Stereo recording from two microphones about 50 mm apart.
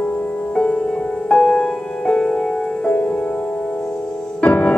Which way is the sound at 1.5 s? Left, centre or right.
Centre.